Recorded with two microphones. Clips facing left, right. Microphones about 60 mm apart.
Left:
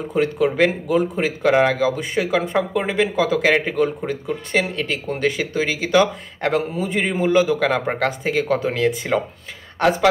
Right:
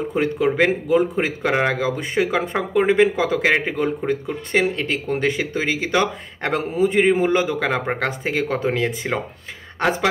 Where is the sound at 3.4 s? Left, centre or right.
Right.